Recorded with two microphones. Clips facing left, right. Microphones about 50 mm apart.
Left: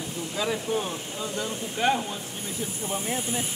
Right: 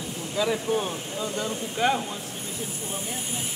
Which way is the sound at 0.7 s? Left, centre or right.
Centre.